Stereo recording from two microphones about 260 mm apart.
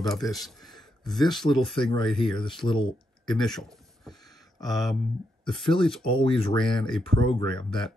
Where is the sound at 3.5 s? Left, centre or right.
Centre.